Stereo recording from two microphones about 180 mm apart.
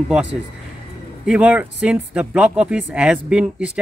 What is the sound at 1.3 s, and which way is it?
A man's voice, 5° right (ahead or behind).